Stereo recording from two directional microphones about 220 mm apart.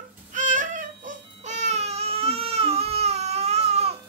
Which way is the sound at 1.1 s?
30° right (ahead or behind).